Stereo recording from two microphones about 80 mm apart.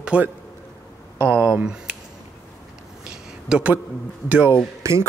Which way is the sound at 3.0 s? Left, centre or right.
Centre.